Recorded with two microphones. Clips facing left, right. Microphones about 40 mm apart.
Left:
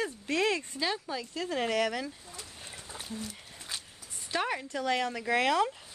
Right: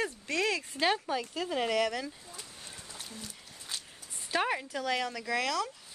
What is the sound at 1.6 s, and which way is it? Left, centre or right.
Speech, centre.